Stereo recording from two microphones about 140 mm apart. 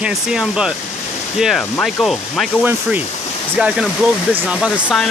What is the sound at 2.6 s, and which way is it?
Speech, 10° right (ahead or behind).